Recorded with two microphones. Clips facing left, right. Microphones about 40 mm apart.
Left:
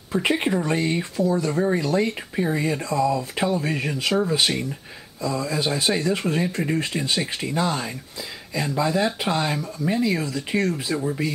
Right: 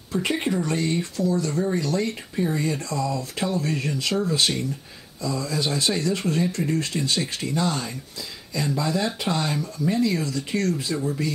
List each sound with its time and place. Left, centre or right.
0.3 s speech: centre